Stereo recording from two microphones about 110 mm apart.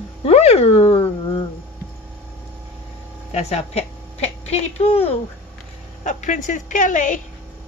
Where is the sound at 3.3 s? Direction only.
75° left (ahead or behind).